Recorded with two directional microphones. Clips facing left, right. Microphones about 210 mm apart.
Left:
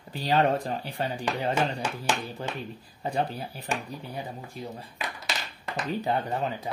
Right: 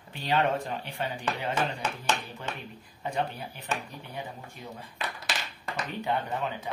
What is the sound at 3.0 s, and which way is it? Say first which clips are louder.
Speech: left 3 dB; 35° left (ahead or behind).